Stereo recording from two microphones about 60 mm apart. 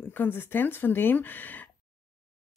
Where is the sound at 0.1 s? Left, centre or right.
Left.